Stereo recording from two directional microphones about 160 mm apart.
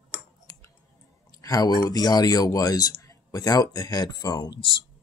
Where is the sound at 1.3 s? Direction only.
25° left (ahead or behind).